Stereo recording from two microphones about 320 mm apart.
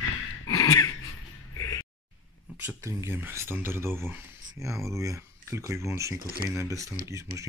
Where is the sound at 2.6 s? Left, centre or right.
Centre.